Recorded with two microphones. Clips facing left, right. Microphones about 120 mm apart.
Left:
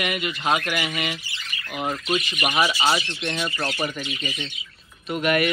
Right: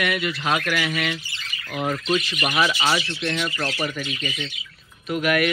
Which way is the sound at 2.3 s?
20° left (ahead or behind).